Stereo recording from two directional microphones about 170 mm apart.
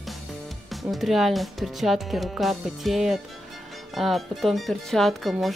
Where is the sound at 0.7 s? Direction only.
Centre (ahead or behind).